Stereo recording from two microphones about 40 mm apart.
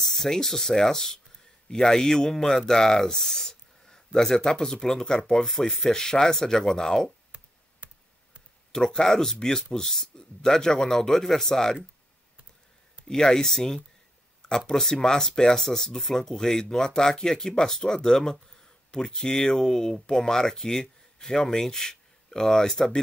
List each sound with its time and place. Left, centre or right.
0.0 s speech: centre
7.3 s a sound: right
8.7 s speech: centre
13.1 s speech: centre